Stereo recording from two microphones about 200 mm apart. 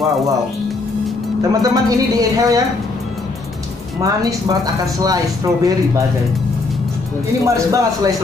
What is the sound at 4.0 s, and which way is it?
Speech, 15° right (ahead or behind).